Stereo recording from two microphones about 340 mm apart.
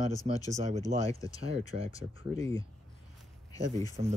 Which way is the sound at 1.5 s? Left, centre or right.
Centre.